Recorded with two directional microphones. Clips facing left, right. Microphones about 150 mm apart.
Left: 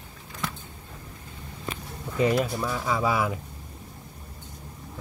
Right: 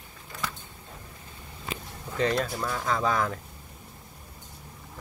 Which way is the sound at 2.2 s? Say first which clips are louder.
Left 3 dB; 10° left (ahead or behind).